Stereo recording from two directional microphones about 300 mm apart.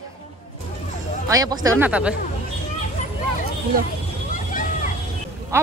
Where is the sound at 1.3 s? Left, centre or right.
Centre.